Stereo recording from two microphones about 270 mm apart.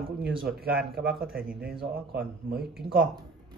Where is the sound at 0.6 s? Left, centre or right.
Right.